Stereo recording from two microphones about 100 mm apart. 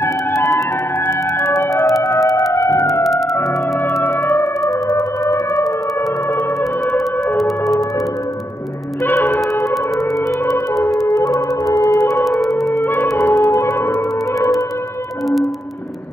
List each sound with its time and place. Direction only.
1.5 s music: 35° left (ahead or behind)
3.0 s music: centre (ahead or behind)
4.1 s music: 25° left (ahead or behind)
9.5 s a sound: 30° left (ahead or behind)
11.1 s music: 35° left (ahead or behind)
12.6 s music: 20° left (ahead or behind)
13.3 s music: 30° left (ahead or behind)